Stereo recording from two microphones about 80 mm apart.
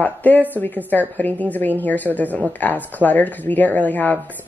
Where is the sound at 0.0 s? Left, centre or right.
Left.